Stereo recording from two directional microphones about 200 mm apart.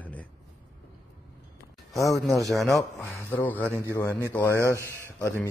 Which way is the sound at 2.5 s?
Centre (ahead or behind).